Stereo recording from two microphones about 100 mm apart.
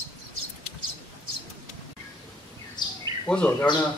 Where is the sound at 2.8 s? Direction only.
45° left (ahead or behind).